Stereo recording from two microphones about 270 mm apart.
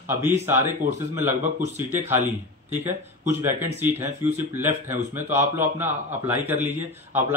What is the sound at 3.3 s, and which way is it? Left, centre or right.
A man's voice, centre.